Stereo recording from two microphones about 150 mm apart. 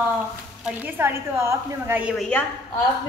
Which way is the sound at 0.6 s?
15° right (ahead or behind).